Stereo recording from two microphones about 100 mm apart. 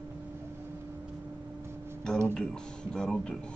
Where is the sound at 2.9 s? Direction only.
5° left (ahead or behind).